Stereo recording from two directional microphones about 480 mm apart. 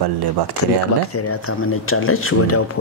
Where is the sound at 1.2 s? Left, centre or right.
Left.